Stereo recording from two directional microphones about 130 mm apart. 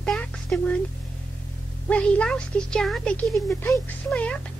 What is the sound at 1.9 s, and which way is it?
Speech, 10° left (ahead or behind).